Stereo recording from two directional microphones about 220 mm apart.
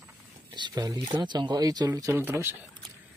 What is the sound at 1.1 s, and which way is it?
Speech, 20° right (ahead or behind).